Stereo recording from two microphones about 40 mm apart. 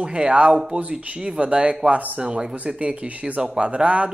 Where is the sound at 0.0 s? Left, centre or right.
Right.